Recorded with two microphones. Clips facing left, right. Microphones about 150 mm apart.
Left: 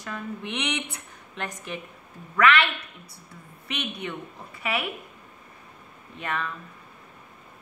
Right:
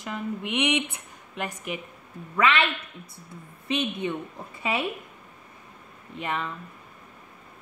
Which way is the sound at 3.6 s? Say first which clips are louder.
Right 6 dB; 20° right (ahead or behind).